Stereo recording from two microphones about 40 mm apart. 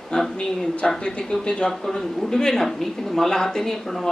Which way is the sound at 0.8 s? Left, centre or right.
Centre.